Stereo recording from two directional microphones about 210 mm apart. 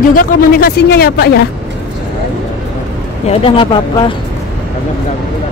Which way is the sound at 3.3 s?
25° left (ahead or behind).